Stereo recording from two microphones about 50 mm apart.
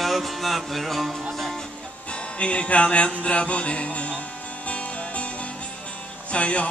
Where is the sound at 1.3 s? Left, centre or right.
Centre.